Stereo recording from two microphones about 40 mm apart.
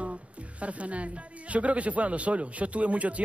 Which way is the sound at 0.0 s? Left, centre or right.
Right.